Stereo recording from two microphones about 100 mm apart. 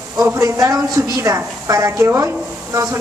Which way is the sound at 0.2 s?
35° right (ahead or behind).